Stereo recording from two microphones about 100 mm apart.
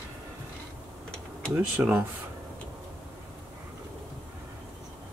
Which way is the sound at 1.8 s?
20° right (ahead or behind).